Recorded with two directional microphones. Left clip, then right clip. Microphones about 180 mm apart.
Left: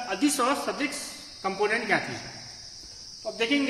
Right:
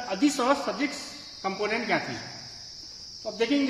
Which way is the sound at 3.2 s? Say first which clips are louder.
Right 1 dB; 65° right (ahead or behind).